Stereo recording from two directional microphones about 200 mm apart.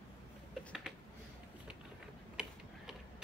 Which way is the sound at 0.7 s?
Centre (ahead or behind).